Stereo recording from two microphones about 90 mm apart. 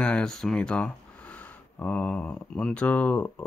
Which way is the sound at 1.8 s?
15° left (ahead or behind).